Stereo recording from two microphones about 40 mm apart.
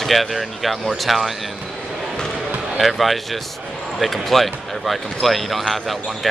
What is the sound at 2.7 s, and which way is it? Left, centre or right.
Speech, centre.